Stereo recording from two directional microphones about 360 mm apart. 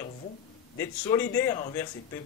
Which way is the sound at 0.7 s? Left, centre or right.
Centre.